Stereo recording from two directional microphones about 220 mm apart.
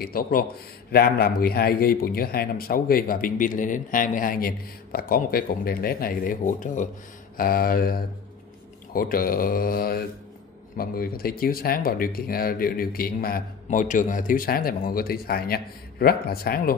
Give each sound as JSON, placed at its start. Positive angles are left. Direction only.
{"t": 0.0, "sound": "speech", "side_deg": 40}